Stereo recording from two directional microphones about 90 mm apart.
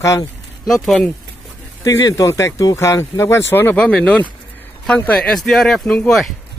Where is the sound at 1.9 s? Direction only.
35° left (ahead or behind); by 5.9 s 5° left (ahead or behind).